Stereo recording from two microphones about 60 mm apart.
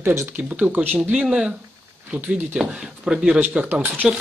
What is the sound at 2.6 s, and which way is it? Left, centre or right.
Speech, centre.